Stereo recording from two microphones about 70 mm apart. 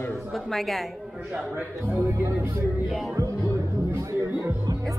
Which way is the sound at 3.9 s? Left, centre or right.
Right.